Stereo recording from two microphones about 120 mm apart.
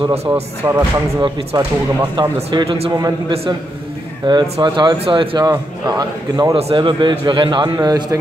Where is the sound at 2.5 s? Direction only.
45° right (ahead or behind).